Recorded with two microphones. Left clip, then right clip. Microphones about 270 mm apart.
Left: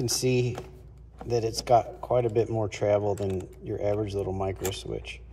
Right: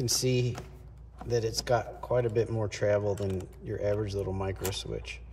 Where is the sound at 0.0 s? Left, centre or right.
Centre.